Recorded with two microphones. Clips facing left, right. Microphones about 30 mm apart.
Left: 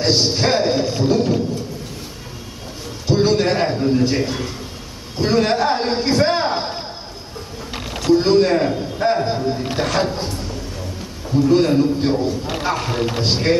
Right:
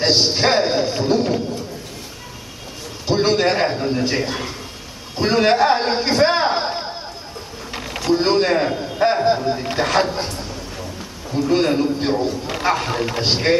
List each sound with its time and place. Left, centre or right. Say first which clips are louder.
0.0 s a man's voice: right 1 dB; centre
3.1 s a sound: even; centre
5.1 s a man's voice: right 1 dB; centre
8.0 s speech: left 3 dB; centre
11.3 s a man's voice: left 3 dB; centre